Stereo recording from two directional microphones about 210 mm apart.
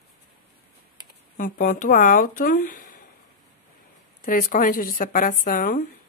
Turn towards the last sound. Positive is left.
turn(degrees=40)  # may be behind; listen again after turning